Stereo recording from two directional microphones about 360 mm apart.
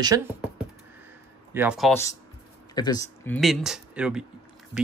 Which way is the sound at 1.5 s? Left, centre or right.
Centre.